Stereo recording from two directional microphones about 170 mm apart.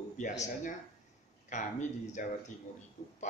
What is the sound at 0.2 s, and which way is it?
Speech, 45° left (ahead or behind).